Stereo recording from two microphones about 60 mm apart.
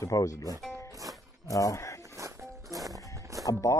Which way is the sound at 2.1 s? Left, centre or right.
Right.